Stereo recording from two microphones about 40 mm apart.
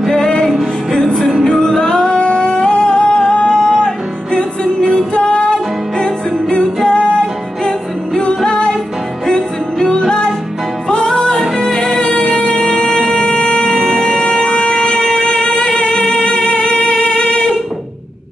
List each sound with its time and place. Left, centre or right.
0.1 s music: centre
0.9 s singing: centre
4.7 s music: centre
13.2 s a sound: left
14.3 s shofar: centre
15.5 s music: left